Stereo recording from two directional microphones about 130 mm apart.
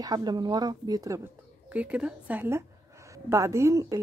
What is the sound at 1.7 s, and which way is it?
A woman's voice, 10° right (ahead or behind).